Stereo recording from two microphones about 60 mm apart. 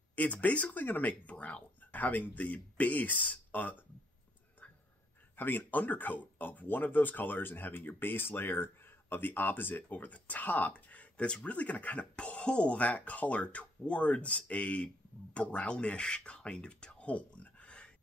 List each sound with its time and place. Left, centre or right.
0.1 s speech: left
5.3 s speech: left; by 17.9 s centre